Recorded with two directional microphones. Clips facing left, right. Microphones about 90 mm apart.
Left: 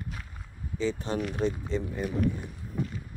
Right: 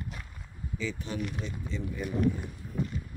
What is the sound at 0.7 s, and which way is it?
Speech, 35° left (ahead or behind).